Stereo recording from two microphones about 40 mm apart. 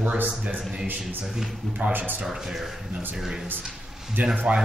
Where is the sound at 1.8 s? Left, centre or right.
Right.